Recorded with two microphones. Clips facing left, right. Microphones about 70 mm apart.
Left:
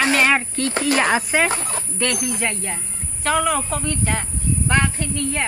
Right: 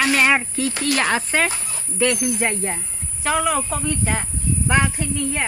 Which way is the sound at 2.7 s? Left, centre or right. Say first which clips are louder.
Even; centre.